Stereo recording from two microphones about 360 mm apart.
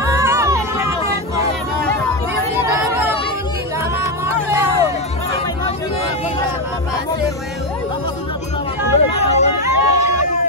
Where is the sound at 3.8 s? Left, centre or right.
Centre.